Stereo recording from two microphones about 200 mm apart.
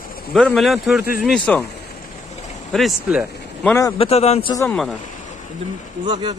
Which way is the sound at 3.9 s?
30° left (ahead or behind).